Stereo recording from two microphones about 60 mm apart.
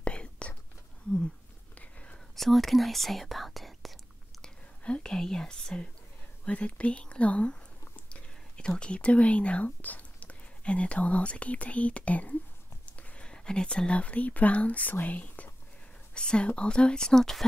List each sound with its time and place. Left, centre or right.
0.0 s whispering: centre
1.8 s whispering: left
2.3 s speech: centre
4.4 s speech: centre